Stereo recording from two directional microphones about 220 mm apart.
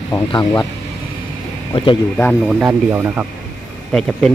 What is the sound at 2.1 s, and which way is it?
Speech, 5° left (ahead or behind).